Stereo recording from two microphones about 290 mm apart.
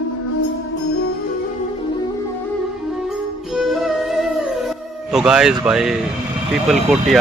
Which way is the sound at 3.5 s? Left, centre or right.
Centre.